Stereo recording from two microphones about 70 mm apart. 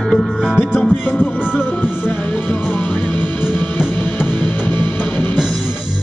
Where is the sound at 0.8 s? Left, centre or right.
Left.